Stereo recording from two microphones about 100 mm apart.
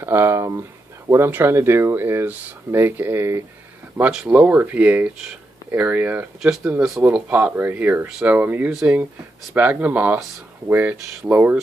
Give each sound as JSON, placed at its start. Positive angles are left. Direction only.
{"t": 0.0, "sound": "speech", "side_deg": -25}
{"t": 4.1, "sound": "speech", "side_deg": -10}